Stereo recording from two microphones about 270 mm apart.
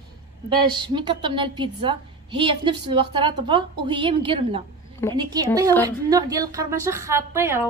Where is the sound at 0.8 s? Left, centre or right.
Centre.